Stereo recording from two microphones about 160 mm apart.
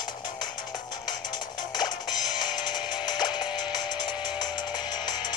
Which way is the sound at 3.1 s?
30° left (ahead or behind).